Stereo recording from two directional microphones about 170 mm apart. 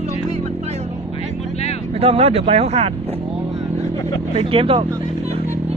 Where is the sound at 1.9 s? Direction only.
35° right (ahead or behind).